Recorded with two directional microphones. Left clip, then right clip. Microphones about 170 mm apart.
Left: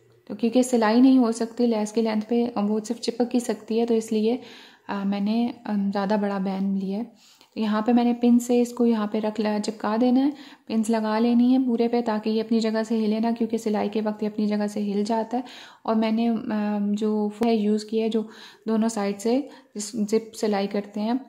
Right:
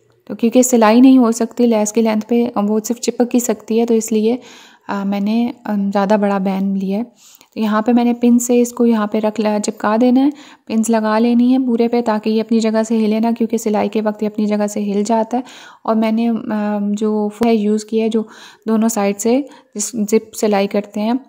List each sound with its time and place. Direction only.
0.3 s speech: 40° right (ahead or behind)